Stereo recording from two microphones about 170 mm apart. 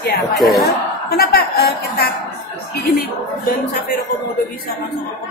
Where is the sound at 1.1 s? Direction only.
65° left (ahead or behind).